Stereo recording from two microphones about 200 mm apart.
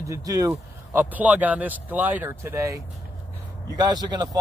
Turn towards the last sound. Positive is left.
turn(degrees=-20)  # may be behind; listen again after turning